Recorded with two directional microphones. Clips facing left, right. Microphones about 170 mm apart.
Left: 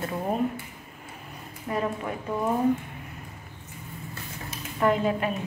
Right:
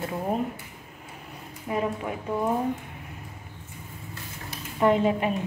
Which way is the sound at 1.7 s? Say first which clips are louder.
Right 1 dB; 10° right (ahead or behind).